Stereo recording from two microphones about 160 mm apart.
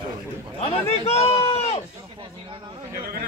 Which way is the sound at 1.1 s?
40° left (ahead or behind).